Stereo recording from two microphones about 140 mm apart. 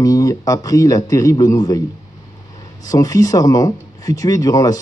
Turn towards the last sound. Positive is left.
turn(degrees=25)  # may be behind; listen again after turning